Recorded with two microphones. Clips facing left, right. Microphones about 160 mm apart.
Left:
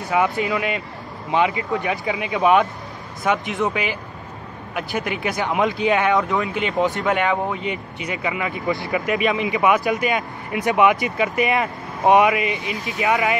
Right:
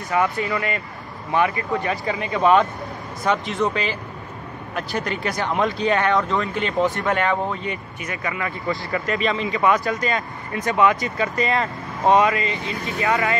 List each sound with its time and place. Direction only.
0.1 s speech: 15° left (ahead or behind)
2.0 s speech: 5° left (ahead or behind)